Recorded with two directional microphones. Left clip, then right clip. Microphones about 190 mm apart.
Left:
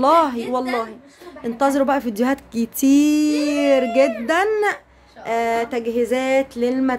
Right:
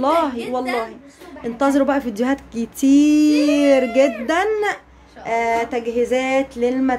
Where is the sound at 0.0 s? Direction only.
25° left (ahead or behind).